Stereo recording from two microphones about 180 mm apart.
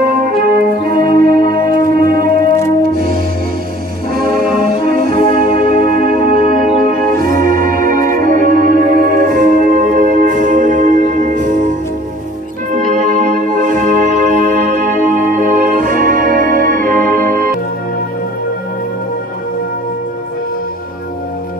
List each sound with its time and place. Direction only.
0.1 s music: 50° right (ahead or behind)
4.9 s brass instrument: 55° right (ahead or behind)
5.3 s music: 55° right (ahead or behind)
12.7 s music: 45° right (ahead or behind)